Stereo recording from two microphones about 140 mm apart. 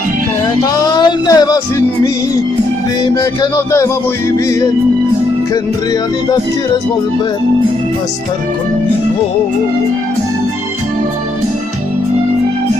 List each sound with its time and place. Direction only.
0.6 s music: 30° left (ahead or behind)
3.2 s music: 20° left (ahead or behind)